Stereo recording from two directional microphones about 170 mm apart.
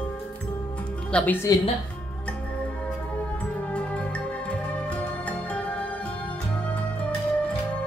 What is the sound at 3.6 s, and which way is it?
Music, 5° left (ahead or behind).